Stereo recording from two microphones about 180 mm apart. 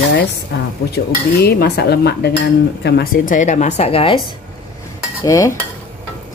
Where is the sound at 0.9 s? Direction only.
65° left (ahead or behind).